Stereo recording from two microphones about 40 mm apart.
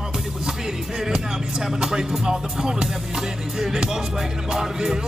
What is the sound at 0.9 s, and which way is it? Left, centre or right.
Music, centre.